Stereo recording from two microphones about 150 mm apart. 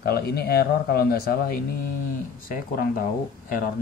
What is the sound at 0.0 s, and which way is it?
Speech, 90° left.